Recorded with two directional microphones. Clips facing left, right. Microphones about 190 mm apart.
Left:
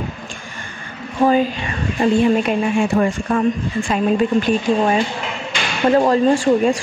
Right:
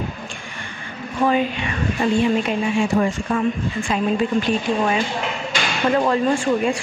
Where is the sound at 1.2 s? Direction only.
35° left (ahead or behind).